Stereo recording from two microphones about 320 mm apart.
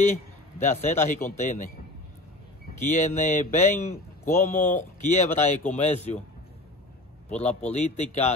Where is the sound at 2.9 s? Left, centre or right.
Left.